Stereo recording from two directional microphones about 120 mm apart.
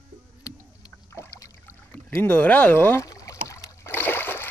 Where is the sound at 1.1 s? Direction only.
25° left (ahead or behind).